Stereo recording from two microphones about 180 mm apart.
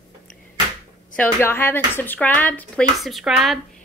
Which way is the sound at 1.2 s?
15° left (ahead or behind).